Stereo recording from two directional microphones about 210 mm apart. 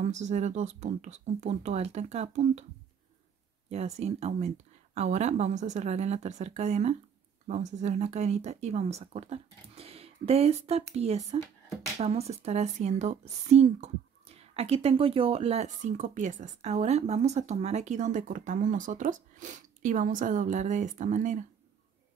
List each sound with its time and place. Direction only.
0.0 s speech: 35° right (ahead or behind)
3.7 s speech: 30° right (ahead or behind)